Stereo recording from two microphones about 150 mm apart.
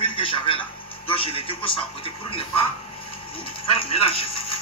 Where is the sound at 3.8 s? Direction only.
40° left (ahead or behind).